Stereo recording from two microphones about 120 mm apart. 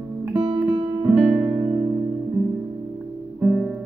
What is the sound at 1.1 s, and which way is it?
Music, 10° right (ahead or behind).